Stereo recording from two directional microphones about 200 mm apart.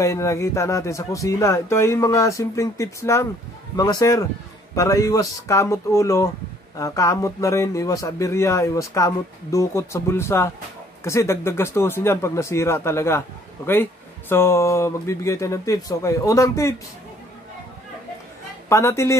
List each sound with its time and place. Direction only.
0.0 s speech: 15° left (ahead or behind)
14.3 s speech: 15° left (ahead or behind)
18.7 s speech: 15° left (ahead or behind)